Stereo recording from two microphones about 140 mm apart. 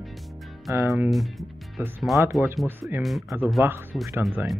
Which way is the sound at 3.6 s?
15° right (ahead or behind).